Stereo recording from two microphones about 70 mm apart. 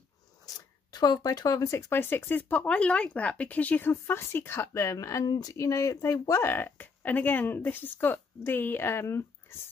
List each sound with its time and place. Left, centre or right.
0.6 s speech: left
2.6 s speech: centre
3.8 s speech: left
5.2 s speech: left
5.5 s speech: left